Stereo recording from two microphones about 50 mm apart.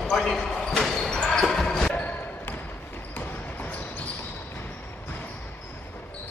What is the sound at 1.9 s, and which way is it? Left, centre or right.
Basketball bounce, left.